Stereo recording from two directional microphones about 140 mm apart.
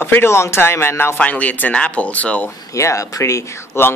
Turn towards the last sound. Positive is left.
turn(degrees=20)  # may be behind; listen again after turning